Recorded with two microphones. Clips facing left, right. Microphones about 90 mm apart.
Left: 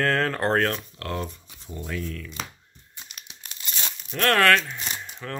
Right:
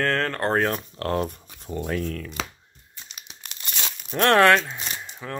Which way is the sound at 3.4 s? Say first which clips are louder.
Right 1 dB; 70° right (ahead or behind).